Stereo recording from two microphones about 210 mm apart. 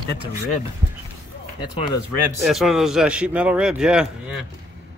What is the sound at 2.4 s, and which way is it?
Speech, centre (ahead or behind).